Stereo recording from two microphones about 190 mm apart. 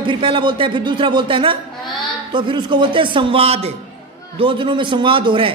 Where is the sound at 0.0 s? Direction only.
25° right (ahead or behind).